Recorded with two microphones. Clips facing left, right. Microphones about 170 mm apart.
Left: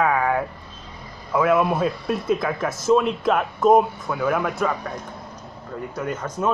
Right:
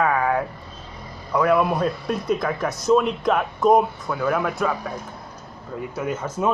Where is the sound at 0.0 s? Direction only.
Centre (ahead or behind).